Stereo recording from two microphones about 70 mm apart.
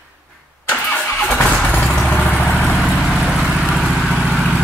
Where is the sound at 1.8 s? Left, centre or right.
Centre.